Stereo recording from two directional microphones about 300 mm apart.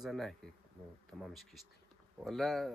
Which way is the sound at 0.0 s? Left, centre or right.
Centre.